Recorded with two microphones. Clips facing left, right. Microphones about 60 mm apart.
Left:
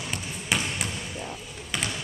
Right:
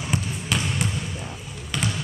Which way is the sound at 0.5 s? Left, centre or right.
Centre.